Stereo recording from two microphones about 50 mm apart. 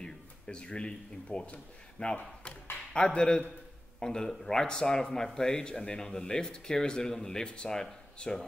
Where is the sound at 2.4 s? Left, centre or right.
Centre.